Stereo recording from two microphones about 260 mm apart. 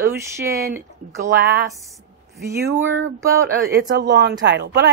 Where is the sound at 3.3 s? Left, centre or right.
Right.